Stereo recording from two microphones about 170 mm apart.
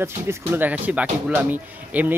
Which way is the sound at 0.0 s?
15° right (ahead or behind).